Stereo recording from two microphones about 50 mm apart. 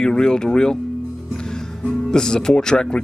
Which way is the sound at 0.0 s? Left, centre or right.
Centre.